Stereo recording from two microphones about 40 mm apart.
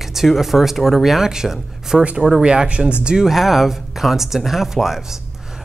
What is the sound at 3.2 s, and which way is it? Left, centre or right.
Speech, centre.